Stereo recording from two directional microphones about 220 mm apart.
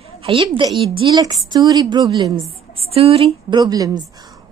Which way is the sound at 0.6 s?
20° right (ahead or behind).